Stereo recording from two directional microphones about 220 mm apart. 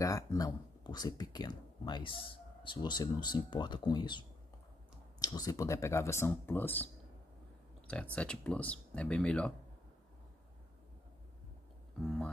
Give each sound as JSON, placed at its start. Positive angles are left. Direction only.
{"t": 0.0, "sound": "speech", "side_deg": 15}
{"t": 5.2, "sound": "speech", "side_deg": 15}